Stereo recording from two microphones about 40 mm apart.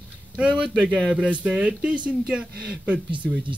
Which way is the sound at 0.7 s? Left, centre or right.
Centre.